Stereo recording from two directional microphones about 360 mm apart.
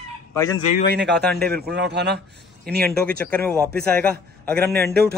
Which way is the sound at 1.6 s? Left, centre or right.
Right.